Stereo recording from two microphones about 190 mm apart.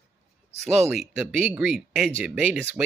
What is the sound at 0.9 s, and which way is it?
Speech, 5° right (ahead or behind).